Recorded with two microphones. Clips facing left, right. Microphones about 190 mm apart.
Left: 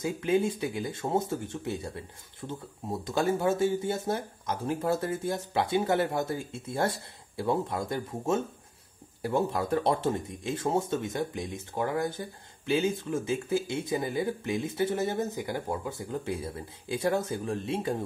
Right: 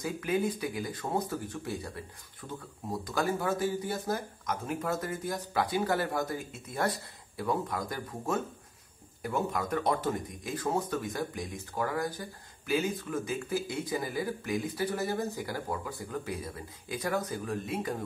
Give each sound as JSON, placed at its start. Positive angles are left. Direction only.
{"t": 0.0, "sound": "speech", "side_deg": 25}